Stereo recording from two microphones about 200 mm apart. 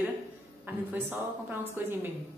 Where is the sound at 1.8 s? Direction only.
10° right (ahead or behind).